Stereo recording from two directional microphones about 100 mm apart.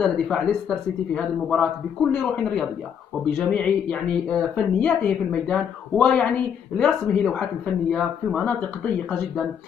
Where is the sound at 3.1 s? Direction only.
25° left (ahead or behind).